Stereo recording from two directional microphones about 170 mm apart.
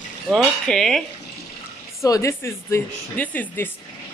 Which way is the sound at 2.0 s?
20° left (ahead or behind).